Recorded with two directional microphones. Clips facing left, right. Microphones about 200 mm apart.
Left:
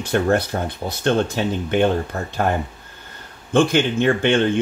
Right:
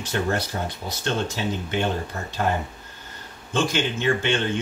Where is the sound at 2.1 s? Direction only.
55° left (ahead or behind).